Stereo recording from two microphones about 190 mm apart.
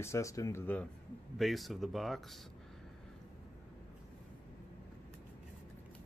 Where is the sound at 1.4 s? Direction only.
Centre (ahead or behind).